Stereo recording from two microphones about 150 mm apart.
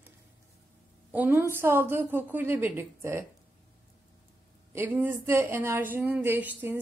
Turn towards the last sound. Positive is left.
turn(degrees=-10)  # may be behind; listen again after turning